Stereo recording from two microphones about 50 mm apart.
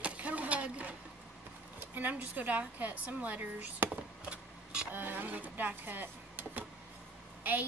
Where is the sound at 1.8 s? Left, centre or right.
Right.